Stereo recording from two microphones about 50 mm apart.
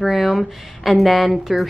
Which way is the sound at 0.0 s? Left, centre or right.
Centre.